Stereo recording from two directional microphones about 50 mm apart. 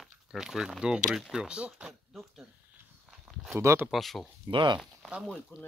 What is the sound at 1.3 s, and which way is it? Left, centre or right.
Speech, right.